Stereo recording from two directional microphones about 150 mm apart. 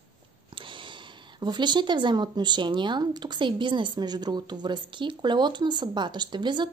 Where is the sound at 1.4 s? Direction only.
30° right (ahead or behind).